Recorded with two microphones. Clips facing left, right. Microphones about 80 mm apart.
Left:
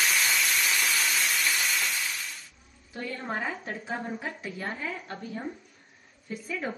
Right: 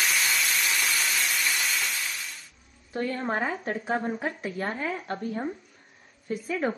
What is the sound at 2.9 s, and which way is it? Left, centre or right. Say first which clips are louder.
A woman's voice: right 5 dB; right.